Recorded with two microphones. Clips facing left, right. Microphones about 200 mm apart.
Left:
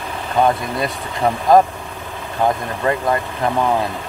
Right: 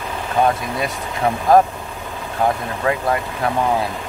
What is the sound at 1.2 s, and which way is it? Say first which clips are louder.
Speech: left 1 dB; 5° right (ahead or behind).